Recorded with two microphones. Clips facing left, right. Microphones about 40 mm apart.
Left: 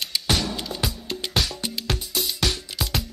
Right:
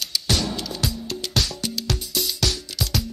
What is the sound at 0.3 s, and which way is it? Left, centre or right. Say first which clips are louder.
Music: even; centre.